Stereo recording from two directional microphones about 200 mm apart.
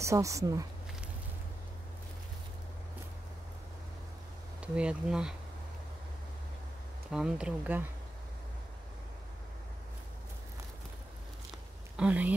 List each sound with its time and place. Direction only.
0.0 s speech: 15° right (ahead or behind)
4.6 s speech: 5° right (ahead or behind)
7.1 s speech: 5° right (ahead or behind)
12.0 s speech: 5° right (ahead or behind)